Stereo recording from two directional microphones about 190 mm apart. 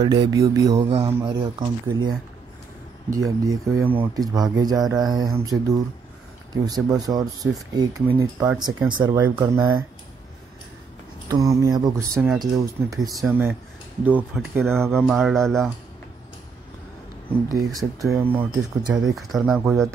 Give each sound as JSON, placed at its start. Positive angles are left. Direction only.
{"t": 0.0, "sound": "speech", "side_deg": -20}
{"t": 0.8, "sound": "speech", "side_deg": -30}
{"t": 6.5, "sound": "speech", "side_deg": -20}
{"t": 11.2, "sound": "speech", "side_deg": -20}
{"t": 15.0, "sound": "speech", "side_deg": 0}
{"t": 17.7, "sound": "speech", "side_deg": -15}
{"t": 19.1, "sound": "speech", "side_deg": 0}